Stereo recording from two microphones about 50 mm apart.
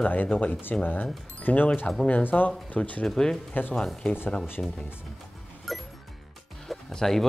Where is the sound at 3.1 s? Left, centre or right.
Centre.